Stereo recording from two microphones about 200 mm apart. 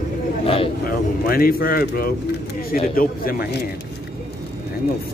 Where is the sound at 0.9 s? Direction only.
45° left (ahead or behind).